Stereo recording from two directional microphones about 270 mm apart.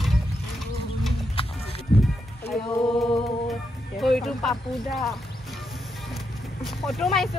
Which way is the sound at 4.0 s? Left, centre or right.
Centre.